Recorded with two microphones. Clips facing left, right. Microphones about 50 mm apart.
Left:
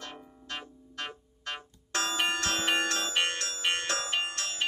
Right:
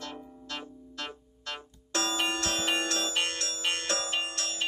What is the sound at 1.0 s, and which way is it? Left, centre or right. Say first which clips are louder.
Bell: left 1 dB; left.